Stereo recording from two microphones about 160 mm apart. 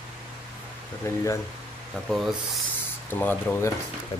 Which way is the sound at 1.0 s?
20° left (ahead or behind).